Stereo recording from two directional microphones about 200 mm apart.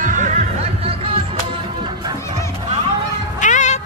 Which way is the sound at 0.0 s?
40° right (ahead or behind).